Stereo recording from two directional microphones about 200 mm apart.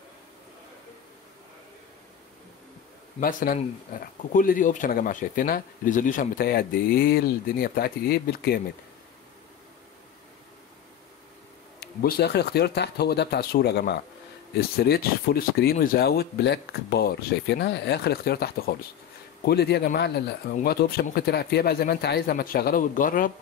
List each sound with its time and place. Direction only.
3.2 s speech: 45° left (ahead or behind)
11.8 s speech: 50° left (ahead or behind)